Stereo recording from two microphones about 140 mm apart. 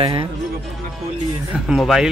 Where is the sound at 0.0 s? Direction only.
35° right (ahead or behind).